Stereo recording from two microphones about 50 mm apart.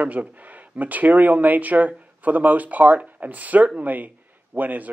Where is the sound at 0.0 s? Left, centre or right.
Right.